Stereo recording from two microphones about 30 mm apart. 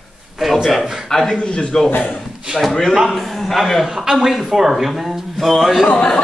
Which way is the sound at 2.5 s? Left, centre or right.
Right.